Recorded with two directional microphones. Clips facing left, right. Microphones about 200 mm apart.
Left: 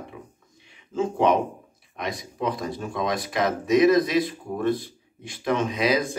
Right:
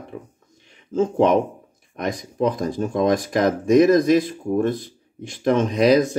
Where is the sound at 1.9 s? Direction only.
45° right (ahead or behind).